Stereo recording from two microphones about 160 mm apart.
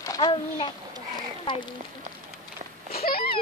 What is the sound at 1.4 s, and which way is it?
Speech, 30° left (ahead or behind).